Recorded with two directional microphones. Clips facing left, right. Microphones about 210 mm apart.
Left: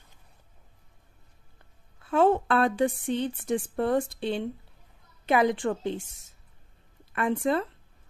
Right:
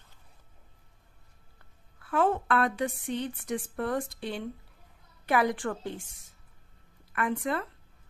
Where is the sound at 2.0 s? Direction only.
25° left (ahead or behind).